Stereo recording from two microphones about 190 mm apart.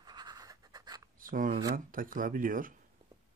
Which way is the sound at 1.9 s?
45° right (ahead or behind).